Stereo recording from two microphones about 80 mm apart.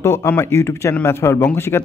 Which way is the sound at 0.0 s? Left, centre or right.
Left.